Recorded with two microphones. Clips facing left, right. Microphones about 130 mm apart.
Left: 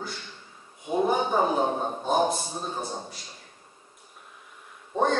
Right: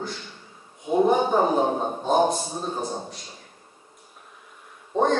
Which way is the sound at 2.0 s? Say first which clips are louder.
Right 4 dB; centre (ahead or behind).